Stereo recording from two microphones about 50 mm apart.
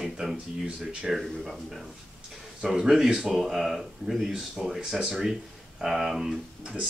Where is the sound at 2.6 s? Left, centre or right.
Centre.